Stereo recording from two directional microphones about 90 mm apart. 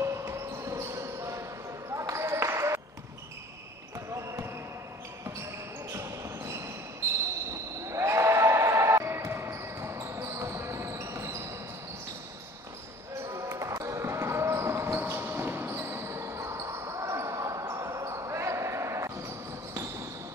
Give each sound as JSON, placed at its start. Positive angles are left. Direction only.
{"t": 0.0, "sound": "basketball bounce", "side_deg": -30}
{"t": 2.0, "sound": "a sound", "side_deg": -35}
{"t": 4.1, "sound": "basketball bounce", "side_deg": -30}
{"t": 5.9, "sound": "basketball bounce", "side_deg": -30}
{"t": 7.9, "sound": "basketball bounce", "side_deg": -35}
{"t": 13.3, "sound": "basketball bounce", "side_deg": -35}